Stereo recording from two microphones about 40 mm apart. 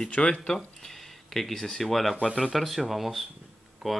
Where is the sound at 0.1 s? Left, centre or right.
Left.